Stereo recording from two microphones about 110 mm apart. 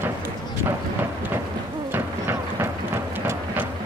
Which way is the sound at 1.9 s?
20° right (ahead or behind).